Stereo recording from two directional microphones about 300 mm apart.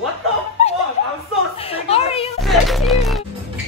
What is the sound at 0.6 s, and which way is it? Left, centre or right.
Snicker, left.